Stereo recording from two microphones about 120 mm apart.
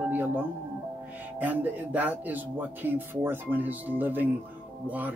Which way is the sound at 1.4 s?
15° right (ahead or behind).